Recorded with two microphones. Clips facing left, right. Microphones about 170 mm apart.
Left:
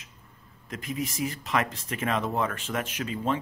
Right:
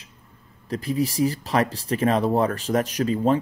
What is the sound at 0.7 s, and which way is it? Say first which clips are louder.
Speech: right 8 dB; 35° right (ahead or behind).